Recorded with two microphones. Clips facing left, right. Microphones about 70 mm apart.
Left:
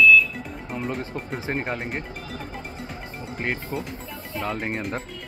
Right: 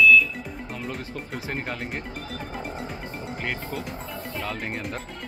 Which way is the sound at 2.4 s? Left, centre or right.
Centre.